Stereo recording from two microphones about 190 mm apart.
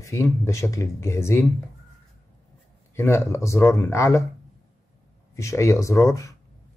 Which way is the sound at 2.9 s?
15° left (ahead or behind).